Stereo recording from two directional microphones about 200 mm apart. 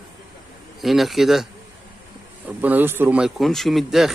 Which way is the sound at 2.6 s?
10° right (ahead or behind).